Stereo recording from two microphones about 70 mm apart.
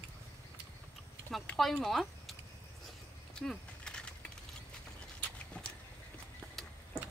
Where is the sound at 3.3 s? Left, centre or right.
Centre.